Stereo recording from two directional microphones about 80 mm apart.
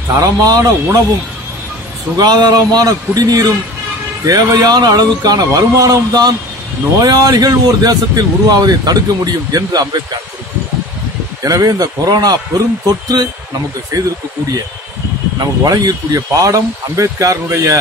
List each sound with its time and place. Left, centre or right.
0.1 s speech: right
2.1 s a man's voice: right
11.4 s speech: right
13.9 s speech: right
15.3 s speech: right